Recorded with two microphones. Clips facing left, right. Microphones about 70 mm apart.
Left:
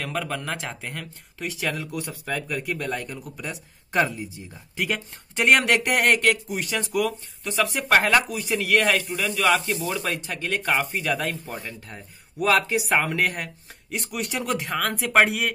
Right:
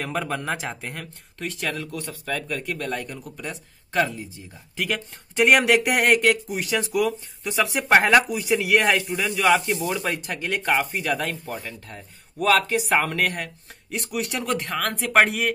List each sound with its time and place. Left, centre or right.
0.0 s speech: centre
4.7 s speech: centre
9.2 s speech: right
10.1 s speech: centre